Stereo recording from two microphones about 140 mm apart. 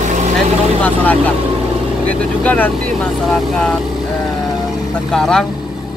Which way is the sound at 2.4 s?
10° left (ahead or behind).